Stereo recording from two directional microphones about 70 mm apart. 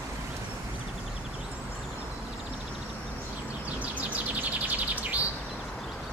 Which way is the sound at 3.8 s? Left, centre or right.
Right.